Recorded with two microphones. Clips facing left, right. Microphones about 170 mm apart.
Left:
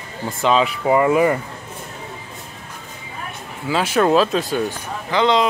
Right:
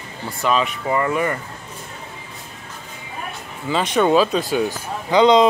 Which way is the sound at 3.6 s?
5° left (ahead or behind).